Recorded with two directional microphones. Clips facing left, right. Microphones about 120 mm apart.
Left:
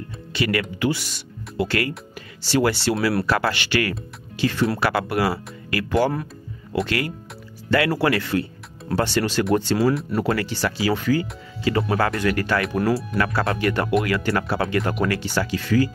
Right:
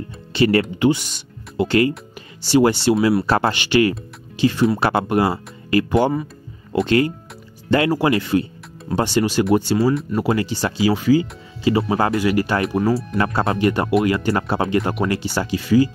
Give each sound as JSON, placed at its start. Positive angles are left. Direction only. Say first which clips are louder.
{"t": 0.3, "sound": "speech", "louder": "right 7 dB", "side_deg": -30}
{"t": 12.8, "sound": "speech", "louder": "right 2 dB", "side_deg": 0}
{"t": 13.2, "sound": "speech", "louder": "right 5 dB", "side_deg": -25}